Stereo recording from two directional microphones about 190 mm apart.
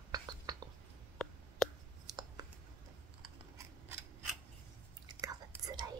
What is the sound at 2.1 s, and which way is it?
Clicking, 20° right (ahead or behind).